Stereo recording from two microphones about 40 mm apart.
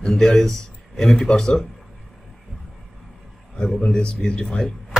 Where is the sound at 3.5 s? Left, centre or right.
Centre.